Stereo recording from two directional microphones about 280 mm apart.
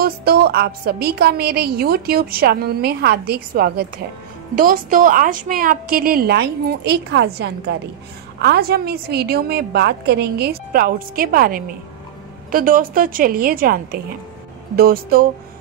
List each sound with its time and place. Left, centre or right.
0.0 s a woman's voice: right